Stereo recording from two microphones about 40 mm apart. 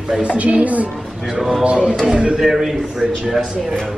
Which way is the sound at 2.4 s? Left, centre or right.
Centre.